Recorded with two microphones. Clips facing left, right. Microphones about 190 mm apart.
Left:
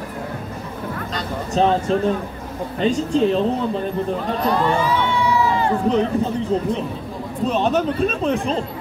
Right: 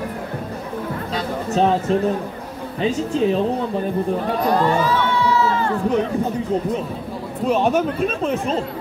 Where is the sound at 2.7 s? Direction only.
5° right (ahead or behind).